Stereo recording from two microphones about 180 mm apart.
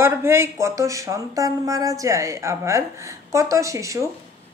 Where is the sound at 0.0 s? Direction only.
15° right (ahead or behind).